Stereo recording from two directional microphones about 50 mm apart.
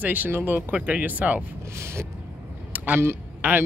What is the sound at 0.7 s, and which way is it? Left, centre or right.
Speech, right.